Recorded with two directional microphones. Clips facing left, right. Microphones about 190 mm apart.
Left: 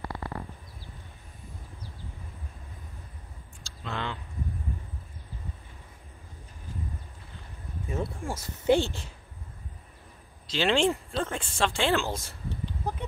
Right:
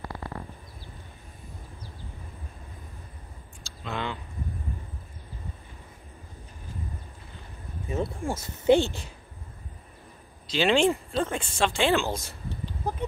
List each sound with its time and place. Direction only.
3.6 s a sound: 15° right (ahead or behind)
7.9 s speech: 25° right (ahead or behind)
10.4 s speech: 15° right (ahead or behind)